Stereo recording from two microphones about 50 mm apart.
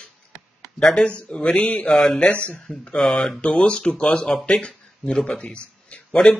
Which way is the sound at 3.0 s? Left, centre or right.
Centre.